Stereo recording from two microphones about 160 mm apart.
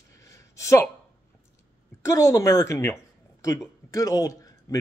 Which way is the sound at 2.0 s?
20° left (ahead or behind).